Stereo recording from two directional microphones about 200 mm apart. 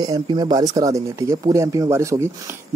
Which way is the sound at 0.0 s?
20° right (ahead or behind).